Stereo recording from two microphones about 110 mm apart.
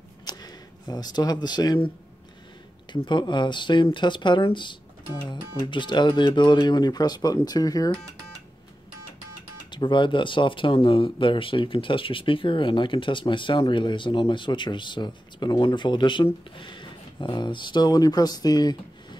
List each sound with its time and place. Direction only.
0.2 s a sound: 40° left (ahead or behind)
2.9 s speech: 45° left (ahead or behind)
9.7 s speech: 45° left (ahead or behind)